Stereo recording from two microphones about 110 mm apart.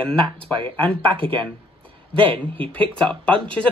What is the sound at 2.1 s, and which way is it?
Speech, 55° right (ahead or behind).